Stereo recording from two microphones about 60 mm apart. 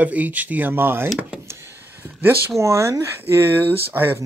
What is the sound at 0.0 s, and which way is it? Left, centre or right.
Speech, right.